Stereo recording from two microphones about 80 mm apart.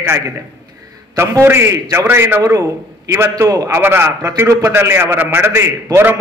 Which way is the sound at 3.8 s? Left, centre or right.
Right.